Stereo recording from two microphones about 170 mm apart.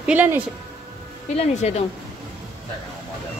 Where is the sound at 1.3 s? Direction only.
40° left (ahead or behind).